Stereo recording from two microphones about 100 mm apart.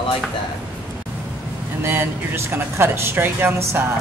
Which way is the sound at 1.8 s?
25° right (ahead or behind).